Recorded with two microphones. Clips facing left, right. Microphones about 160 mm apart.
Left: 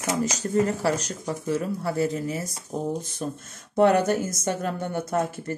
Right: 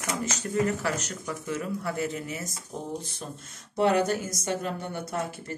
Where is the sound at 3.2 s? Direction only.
50° left (ahead or behind).